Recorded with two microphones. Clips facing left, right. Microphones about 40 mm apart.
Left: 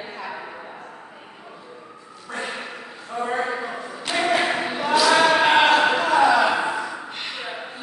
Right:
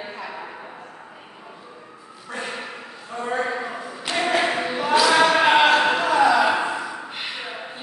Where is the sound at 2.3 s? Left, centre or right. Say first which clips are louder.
Left 1 dB; centre.